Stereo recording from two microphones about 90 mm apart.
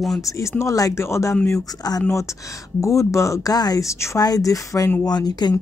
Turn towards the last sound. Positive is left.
turn(degrees=50)  # may be behind; listen again after turning